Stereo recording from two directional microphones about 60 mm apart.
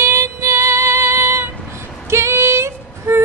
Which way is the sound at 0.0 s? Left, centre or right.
Right.